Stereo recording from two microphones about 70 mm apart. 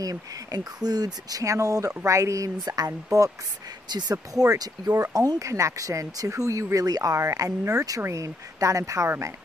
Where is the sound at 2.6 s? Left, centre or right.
Right.